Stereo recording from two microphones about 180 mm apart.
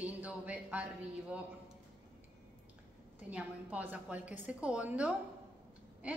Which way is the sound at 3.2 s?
10° right (ahead or behind).